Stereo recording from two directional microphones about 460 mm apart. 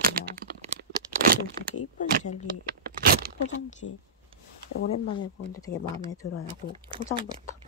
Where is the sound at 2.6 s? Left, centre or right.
Centre.